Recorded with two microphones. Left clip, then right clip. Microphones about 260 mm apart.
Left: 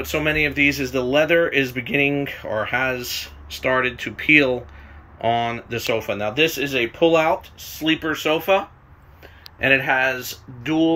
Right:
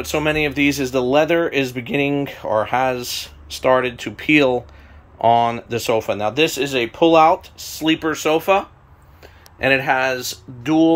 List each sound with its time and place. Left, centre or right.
0.0 s speech: centre